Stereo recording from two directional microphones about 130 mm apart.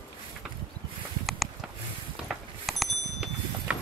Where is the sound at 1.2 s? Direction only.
Centre (ahead or behind).